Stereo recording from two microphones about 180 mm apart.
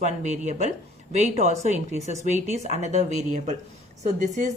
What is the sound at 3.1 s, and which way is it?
Speech, 45° right (ahead or behind).